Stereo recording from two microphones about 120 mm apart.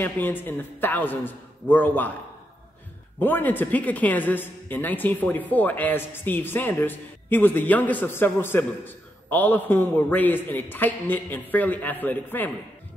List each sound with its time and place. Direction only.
0.0 s speech: 15° left (ahead or behind)
3.2 s speech: 15° left (ahead or behind)